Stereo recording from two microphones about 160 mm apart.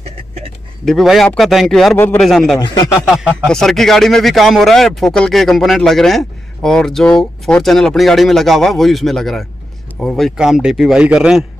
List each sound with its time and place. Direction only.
0.8 s speech: centre (ahead or behind)
2.0 s a man's voice: 10° left (ahead or behind)
2.2 s speech: centre (ahead or behind)
2.6 s speech: 25° left (ahead or behind)
3.4 s speech: 5° left (ahead or behind)